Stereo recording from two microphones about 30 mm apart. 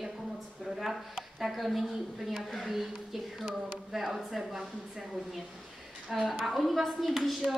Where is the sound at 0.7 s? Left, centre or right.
Centre.